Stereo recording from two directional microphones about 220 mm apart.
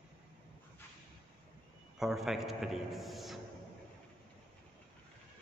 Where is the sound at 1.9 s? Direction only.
Centre (ahead or behind).